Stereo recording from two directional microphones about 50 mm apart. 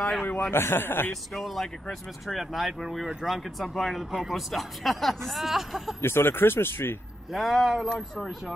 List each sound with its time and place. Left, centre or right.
0.0 s a man's voice: centre
0.5 s speech: left
1.3 s speech: centre
5.9 s speech: left
7.3 s speech: centre